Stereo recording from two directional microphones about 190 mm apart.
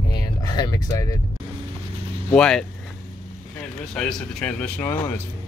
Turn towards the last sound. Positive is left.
turn(degrees=10)  # may be behind; listen again after turning